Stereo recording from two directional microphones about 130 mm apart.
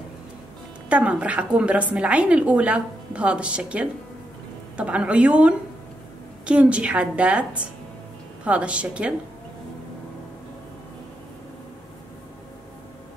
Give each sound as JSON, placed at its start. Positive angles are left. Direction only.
{"t": 0.8, "sound": "a woman's voice", "side_deg": -10}